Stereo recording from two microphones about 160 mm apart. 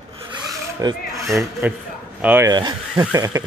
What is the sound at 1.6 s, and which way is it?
Speech, 10° right (ahead or behind).